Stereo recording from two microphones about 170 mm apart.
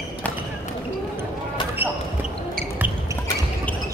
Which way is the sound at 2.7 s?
10° right (ahead or behind).